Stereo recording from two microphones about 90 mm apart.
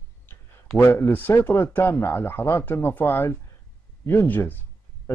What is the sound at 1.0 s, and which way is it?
Speech, 20° left (ahead or behind).